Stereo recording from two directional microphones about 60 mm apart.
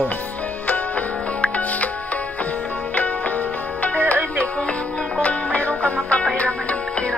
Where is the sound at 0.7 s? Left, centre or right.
Left.